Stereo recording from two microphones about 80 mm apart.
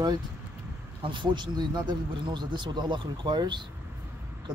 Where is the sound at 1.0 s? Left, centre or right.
Right.